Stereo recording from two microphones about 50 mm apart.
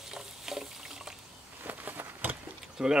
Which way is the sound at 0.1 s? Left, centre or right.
Centre.